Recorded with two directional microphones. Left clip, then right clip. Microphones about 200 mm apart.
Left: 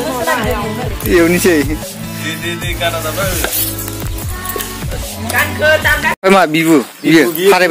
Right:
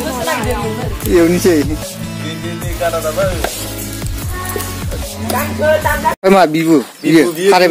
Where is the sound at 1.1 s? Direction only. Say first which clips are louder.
Even; 5° right (ahead or behind).